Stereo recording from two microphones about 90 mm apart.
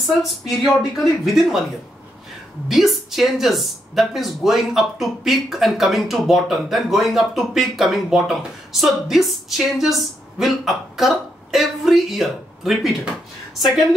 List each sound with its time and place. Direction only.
0.0 s speech: centre (ahead or behind)
2.7 s speech: centre (ahead or behind)